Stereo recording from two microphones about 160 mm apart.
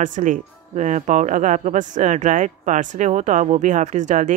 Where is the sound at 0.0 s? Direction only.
55° right (ahead or behind).